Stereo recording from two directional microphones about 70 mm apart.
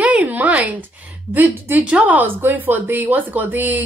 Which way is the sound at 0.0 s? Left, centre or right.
Right.